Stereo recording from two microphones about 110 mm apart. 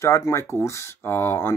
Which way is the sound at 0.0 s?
25° left (ahead or behind).